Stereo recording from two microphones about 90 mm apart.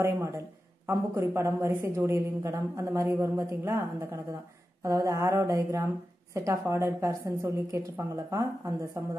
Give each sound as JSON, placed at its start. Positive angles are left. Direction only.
{"t": 0.0, "sound": "a woman's voice", "side_deg": -30}